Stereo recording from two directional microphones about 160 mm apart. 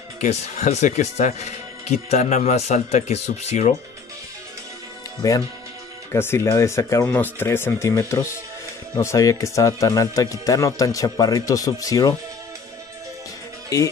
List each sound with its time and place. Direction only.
0.2 s speech: 45° left (ahead or behind)
5.2 s speech: 20° left (ahead or behind)
13.7 s speech: 20° left (ahead or behind)